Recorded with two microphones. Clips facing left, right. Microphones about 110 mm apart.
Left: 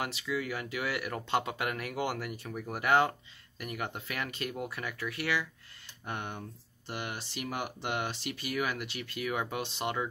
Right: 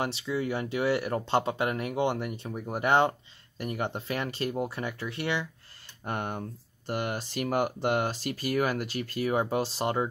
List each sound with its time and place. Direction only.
0.0 s speech: 30° right (ahead or behind)
6.0 s speech: 45° right (ahead or behind)